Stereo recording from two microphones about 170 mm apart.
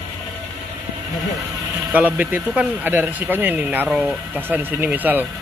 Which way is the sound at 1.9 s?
10° right (ahead or behind).